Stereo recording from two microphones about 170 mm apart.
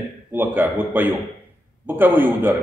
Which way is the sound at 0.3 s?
10° right (ahead or behind).